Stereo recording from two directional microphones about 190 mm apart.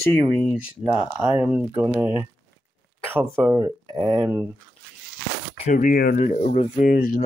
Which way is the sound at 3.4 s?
15° right (ahead or behind).